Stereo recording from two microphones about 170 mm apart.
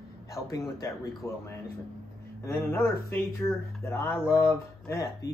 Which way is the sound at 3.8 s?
15° left (ahead or behind).